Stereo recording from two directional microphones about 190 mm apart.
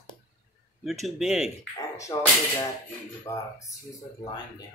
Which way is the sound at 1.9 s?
15° left (ahead or behind).